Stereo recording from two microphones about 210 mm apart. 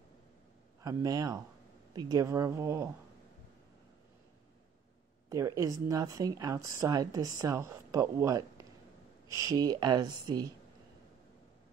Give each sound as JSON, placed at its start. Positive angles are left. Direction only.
{"t": 0.8, "sound": "a woman's voice", "side_deg": -15}
{"t": 5.3, "sound": "a woman's voice", "side_deg": -15}